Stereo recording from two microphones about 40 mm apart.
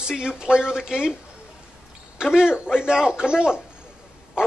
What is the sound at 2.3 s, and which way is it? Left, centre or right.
A man's voice, centre.